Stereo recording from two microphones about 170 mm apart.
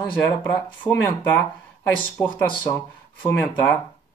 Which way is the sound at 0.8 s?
15° left (ahead or behind).